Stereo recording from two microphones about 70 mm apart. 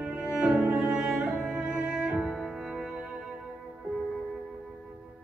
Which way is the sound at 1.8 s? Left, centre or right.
Centre.